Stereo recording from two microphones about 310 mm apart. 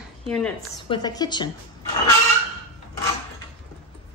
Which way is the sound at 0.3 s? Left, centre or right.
Centre.